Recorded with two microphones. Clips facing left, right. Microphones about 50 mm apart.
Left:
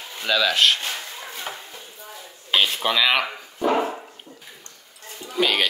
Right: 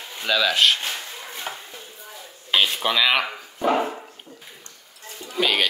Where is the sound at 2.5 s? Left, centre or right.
Centre.